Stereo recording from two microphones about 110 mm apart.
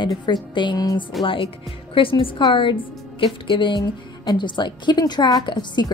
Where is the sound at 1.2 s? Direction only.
50° left (ahead or behind).